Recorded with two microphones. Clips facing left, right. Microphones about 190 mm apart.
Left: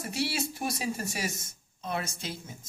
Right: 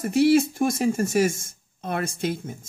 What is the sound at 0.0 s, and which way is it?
Speech, 50° right (ahead or behind).